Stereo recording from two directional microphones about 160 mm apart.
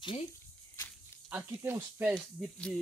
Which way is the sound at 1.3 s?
15° right (ahead or behind).